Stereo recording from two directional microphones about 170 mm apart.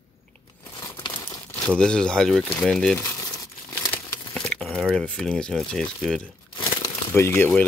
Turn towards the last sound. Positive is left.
turn(degrees=15)  # may be behind; listen again after turning